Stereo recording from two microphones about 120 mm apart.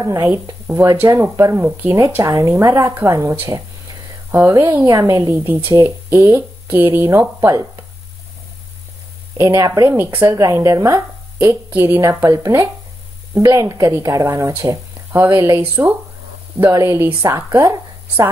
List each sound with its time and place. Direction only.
0.0 s speech: 30° right (ahead or behind)
0.7 s speech: 15° right (ahead or behind)
1.0 s speech: 25° right (ahead or behind)
9.4 s speech: 25° right (ahead or behind)